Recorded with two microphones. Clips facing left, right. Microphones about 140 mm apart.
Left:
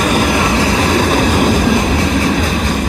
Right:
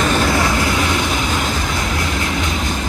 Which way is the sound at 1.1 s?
55° left (ahead or behind).